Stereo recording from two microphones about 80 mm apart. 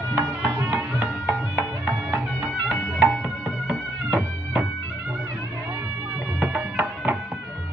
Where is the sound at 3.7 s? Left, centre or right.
Centre.